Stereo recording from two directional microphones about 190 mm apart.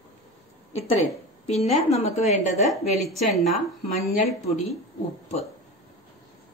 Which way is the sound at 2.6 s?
Centre (ahead or behind).